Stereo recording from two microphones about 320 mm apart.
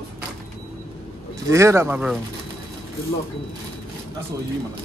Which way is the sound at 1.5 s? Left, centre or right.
Centre.